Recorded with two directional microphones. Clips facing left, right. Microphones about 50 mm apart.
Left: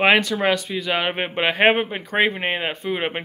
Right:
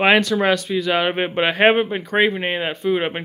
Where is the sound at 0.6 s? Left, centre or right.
Centre.